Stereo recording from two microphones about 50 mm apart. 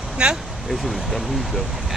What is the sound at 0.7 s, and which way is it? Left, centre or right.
Speech, centre.